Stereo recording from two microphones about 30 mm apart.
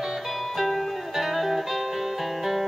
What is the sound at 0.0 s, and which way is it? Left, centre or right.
Music, centre.